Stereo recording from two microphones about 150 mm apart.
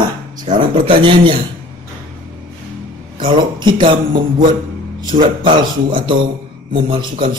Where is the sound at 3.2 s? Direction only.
30° right (ahead or behind).